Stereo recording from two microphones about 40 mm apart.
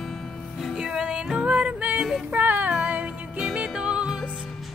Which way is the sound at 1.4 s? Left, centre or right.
Right.